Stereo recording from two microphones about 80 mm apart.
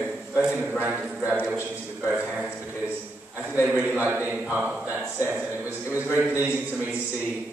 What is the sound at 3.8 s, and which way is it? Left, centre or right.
A man's voice, right.